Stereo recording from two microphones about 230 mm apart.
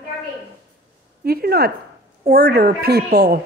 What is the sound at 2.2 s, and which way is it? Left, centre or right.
A woman's voice, right.